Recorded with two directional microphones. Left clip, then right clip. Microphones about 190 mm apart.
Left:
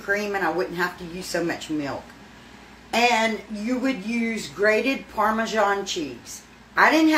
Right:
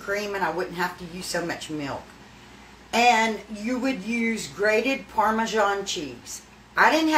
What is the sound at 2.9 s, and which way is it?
A woman's voice, 10° right (ahead or behind).